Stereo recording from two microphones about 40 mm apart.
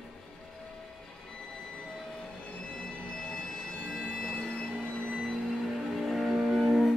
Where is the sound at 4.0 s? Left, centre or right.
Centre.